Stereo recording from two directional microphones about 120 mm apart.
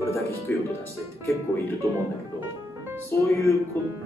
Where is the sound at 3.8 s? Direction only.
15° left (ahead or behind).